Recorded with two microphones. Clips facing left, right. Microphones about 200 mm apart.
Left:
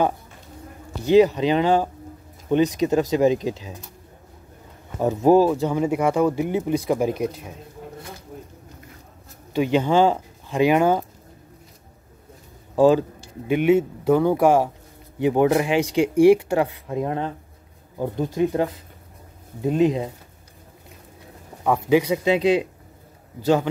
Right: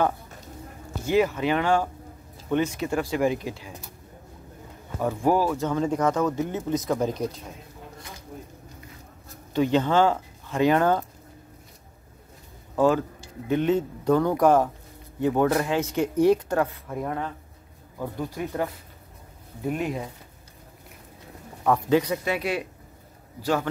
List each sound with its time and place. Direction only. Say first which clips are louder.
1.0 s speech: left 7 dB; 20° left (ahead or behind)
5.0 s speech: left 7 dB; 20° left (ahead or behind)
9.5 s speech: left 2 dB; 15° left (ahead or behind)
13.5 s speech: left 5 dB; 10° left (ahead or behind)
21.6 s speech: left 3 dB; 10° left (ahead or behind)